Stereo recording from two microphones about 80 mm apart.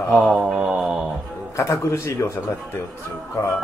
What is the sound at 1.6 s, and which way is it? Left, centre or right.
Speech, left.